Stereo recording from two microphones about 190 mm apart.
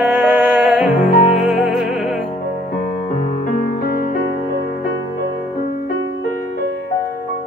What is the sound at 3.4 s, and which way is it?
Music, 45° left (ahead or behind).